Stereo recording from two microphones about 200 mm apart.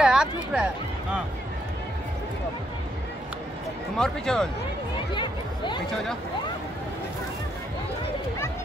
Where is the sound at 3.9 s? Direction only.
5° left (ahead or behind).